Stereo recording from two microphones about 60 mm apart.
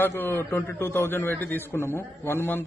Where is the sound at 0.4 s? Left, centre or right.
Left.